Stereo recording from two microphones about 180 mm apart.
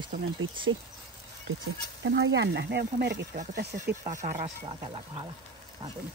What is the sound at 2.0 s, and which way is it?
Speech, 80° right.